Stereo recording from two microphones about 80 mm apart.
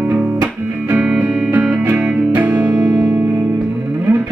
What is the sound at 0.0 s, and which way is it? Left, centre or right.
Music, centre.